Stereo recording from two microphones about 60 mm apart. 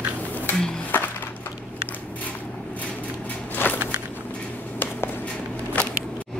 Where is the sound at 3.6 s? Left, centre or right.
Left.